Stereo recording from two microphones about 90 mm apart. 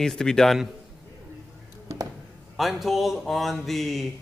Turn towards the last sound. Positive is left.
turn(degrees=0)  # may be behind; listen again after turning